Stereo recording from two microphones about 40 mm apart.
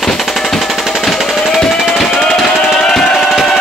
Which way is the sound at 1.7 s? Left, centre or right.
Centre.